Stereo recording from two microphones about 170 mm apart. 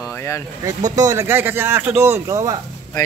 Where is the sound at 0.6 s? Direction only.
20° right (ahead or behind).